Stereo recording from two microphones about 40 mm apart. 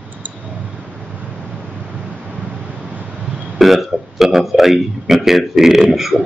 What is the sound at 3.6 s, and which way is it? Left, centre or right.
A man's voice, centre.